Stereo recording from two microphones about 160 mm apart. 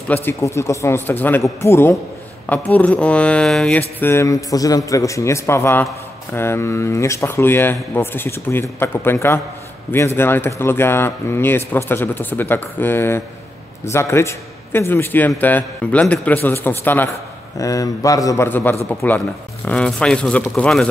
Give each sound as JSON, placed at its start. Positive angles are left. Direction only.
{"t": 0.1, "sound": "speech", "side_deg": 15}
{"t": 4.0, "sound": "a man's voice", "side_deg": 15}